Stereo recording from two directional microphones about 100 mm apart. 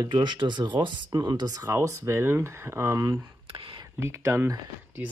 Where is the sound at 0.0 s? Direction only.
50° right (ahead or behind); by 4.6 s 30° right (ahead or behind).